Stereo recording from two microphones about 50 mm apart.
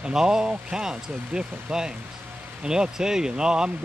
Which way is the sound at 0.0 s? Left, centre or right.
Centre.